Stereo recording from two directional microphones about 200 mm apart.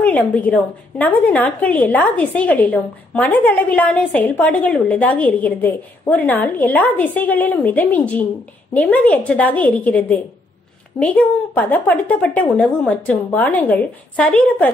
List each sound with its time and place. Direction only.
0.0 s a woman's voice: 5° left (ahead or behind)